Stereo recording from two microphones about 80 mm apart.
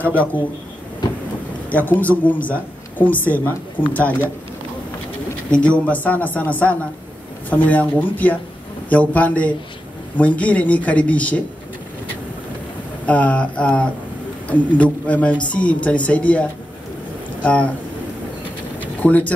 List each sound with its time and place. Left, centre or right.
0.0 s a woman's voice: centre
1.7 s a woman's voice: centre
5.5 s a woman's voice: centre
13.0 s speech: centre
18.9 s speech: centre